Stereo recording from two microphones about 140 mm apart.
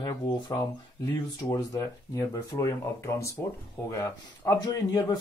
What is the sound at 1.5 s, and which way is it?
A man's voice, 20° left (ahead or behind).